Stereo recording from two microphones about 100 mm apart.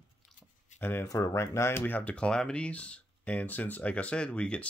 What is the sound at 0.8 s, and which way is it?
Speech, 20° left (ahead or behind).